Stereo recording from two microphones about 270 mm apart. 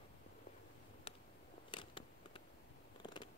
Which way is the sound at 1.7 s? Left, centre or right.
Centre.